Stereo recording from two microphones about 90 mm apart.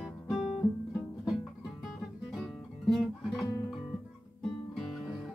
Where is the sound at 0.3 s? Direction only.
5° right (ahead or behind).